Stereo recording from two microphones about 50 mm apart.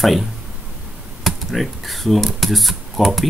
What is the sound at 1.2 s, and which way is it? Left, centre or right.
Speech, centre.